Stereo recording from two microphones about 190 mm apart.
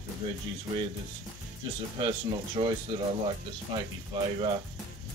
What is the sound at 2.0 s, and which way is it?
Speech, 25° right (ahead or behind).